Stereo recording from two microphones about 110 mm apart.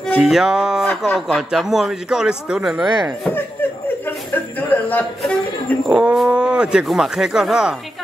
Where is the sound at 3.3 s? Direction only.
20° left (ahead or behind).